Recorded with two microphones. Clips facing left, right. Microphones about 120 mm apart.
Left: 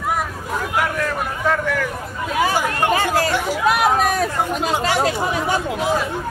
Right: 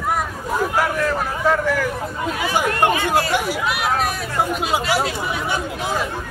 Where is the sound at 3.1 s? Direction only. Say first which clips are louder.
Even; 15° right (ahead or behind).